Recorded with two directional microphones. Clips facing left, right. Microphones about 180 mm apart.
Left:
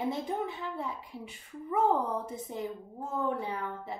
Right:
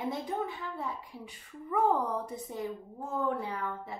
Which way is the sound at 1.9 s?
25° left (ahead or behind).